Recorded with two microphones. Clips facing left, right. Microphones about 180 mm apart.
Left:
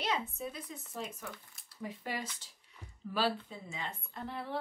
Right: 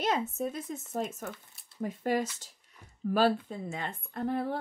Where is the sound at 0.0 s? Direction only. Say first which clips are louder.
Right 6 dB; 45° right (ahead or behind).